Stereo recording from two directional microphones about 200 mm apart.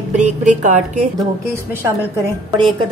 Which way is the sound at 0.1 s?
35° right (ahead or behind).